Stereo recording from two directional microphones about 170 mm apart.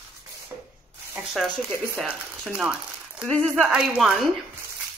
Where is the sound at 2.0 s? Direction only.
5° right (ahead or behind).